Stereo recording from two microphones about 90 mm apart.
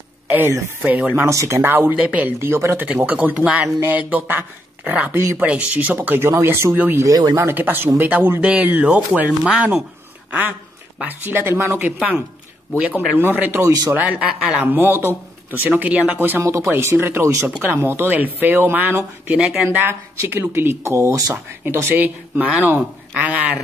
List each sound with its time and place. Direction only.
0.3 s speech: 25° right (ahead or behind)
0.8 s speech: 15° right (ahead or behind)
1.2 s speech: 35° right (ahead or behind)
2.9 s speech: 15° right (ahead or behind)
7.0 s speech: 45° right (ahead or behind)
7.3 s speech: 25° right (ahead or behind)
11.0 s speech: 20° right (ahead or behind)
12.7 s speech: 15° right (ahead or behind)
13.6 s a man's voice: 40° right (ahead or behind)
13.9 s speech: 15° right (ahead or behind); by 21.4 s 40° right (ahead or behind)
21.6 s speech: 25° right (ahead or behind)